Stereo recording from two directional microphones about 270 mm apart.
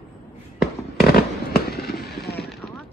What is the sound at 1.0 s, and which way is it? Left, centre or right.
Fireworks, left.